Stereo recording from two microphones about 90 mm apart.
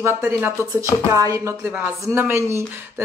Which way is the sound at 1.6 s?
20° right (ahead or behind).